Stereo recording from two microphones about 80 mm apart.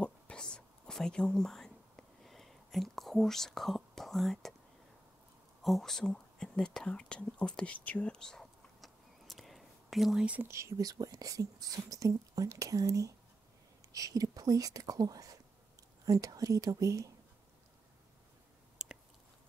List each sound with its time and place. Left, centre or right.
0.0 s a sound: centre
5.6 s whispering: centre
10.2 s speech: centre
10.8 s speech: right
18.8 s chewing: centre